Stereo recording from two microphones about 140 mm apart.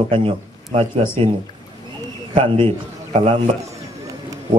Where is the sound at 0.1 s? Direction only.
35° right (ahead or behind).